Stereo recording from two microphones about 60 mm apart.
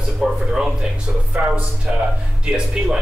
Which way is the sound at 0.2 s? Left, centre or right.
Centre.